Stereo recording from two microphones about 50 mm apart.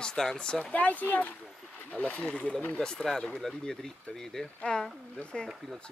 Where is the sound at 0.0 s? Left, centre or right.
Centre.